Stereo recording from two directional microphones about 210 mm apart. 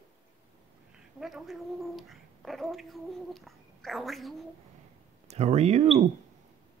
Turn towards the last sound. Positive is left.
turn(degrees=-30)  # may be behind; listen again after turning